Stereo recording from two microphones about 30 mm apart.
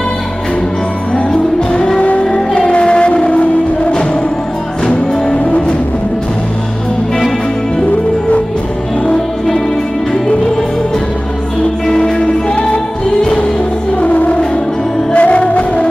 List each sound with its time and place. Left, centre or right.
2.0 s music: left
2.3 s music: left
4.8 s music: left
14.0 s music: left